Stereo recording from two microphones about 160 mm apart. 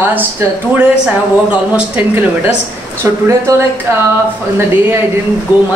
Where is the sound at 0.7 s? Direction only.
10° right (ahead or behind).